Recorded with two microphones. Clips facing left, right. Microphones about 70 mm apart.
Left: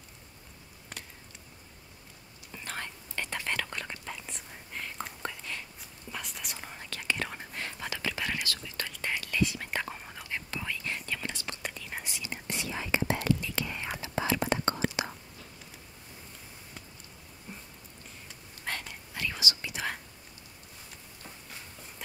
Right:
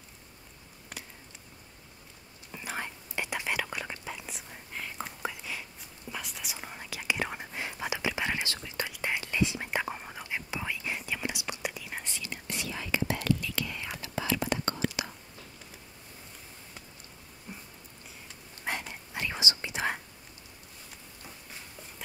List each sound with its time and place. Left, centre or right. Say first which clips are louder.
2.5 s whispering: right 2 dB; centre
12.3 s whispering: left 2 dB; left
17.5 s a sound: right 1 dB; centre
18.6 s whispering: right 2 dB; centre